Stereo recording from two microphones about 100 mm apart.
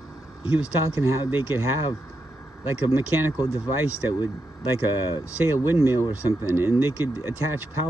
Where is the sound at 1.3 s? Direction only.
20° right (ahead or behind).